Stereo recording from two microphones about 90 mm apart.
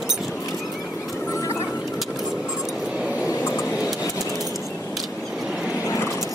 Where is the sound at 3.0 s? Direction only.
15° right (ahead or behind).